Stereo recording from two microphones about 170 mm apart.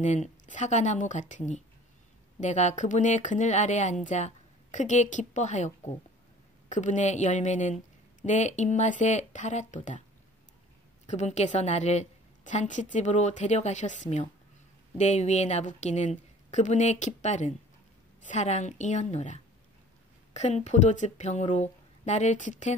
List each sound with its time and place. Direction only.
0.0 s speech: 45° left (ahead or behind)
11.1 s speech: 40° left (ahead or behind)